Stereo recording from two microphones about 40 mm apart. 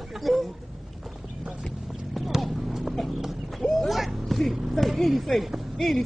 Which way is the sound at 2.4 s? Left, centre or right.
Centre.